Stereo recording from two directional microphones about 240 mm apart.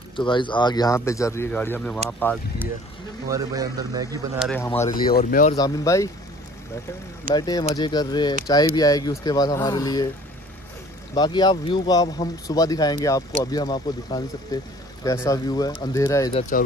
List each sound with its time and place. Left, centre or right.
0.1 s speech: centre
3.3 s a man's voice: centre
4.4 s speech: centre
5.1 s speech: left
5.6 s speech: centre
7.3 s speech: centre
11.1 s speech: centre
16.3 s speech: left